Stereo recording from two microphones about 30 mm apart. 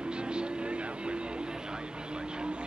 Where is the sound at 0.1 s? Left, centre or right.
Right.